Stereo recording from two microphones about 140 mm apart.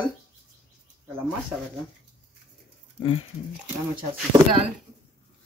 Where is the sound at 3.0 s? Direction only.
40° left (ahead or behind).